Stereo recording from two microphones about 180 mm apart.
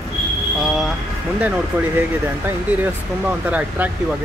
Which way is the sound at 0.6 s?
Centre (ahead or behind).